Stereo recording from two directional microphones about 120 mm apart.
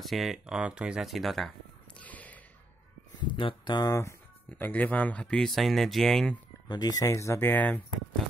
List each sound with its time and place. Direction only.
0.0 s speech: centre (ahead or behind)
2.0 s a sound: 15° left (ahead or behind)
3.2 s speech: 40° left (ahead or behind)
4.5 s speech: 15° left (ahead or behind)
6.7 s speech: 35° left (ahead or behind); by 7.8 s 15° left (ahead or behind)